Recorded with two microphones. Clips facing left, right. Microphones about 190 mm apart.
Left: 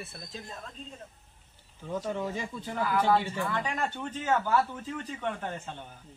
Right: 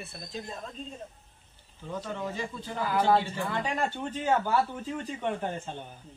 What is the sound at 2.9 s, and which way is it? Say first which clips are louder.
Speech: right 1 dB; 25° right (ahead or behind).